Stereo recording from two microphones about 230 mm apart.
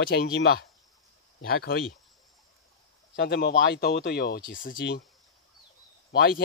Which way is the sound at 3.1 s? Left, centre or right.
Left.